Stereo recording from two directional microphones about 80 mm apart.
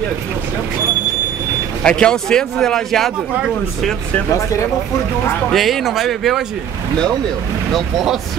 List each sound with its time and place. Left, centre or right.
1.8 s a man's voice: centre
4.3 s speech: left
5.5 s speech: centre
7.7 s speech: centre